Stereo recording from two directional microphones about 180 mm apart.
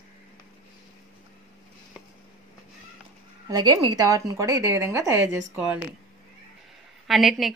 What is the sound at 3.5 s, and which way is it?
Speech, 20° right (ahead or behind).